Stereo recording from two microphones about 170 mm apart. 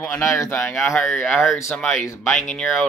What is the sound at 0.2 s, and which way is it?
Speech, 15° left (ahead or behind).